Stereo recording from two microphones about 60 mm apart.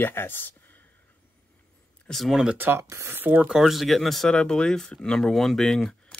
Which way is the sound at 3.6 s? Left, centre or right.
Centre.